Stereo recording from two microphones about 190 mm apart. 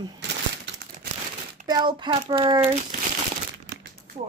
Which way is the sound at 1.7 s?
25° right (ahead or behind).